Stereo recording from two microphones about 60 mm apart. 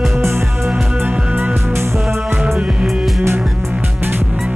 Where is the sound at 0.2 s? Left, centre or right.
Right.